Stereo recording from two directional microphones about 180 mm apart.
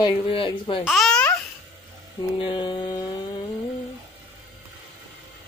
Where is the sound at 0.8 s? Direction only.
Centre (ahead or behind).